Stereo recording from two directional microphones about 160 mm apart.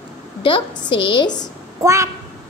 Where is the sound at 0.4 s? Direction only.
30° left (ahead or behind).